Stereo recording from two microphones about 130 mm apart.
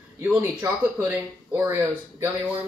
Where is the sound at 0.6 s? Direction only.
20° right (ahead or behind).